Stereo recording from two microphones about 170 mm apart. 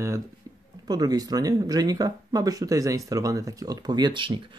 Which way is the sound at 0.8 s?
25° right (ahead or behind).